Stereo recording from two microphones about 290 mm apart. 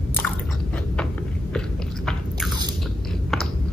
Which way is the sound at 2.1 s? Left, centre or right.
Centre.